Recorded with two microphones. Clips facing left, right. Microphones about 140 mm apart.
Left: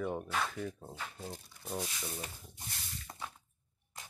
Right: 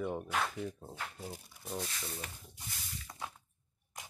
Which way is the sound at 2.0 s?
20° left (ahead or behind).